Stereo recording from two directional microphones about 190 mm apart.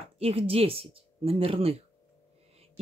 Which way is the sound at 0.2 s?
30° right (ahead or behind).